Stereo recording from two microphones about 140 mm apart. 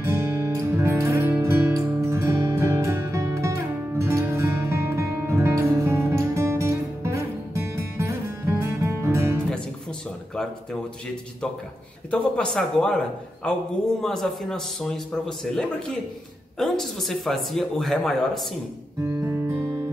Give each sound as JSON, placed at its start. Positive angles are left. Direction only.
{"t": 0.0, "sound": "music", "side_deg": -20}
{"t": 10.3, "sound": "speech", "side_deg": 5}
{"t": 12.1, "sound": "a man's voice", "side_deg": 5}
{"t": 19.0, "sound": "music", "side_deg": -15}